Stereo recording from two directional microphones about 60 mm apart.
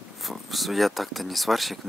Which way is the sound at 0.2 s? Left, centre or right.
Centre.